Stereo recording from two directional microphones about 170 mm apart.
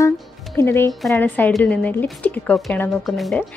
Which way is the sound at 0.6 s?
15° left (ahead or behind).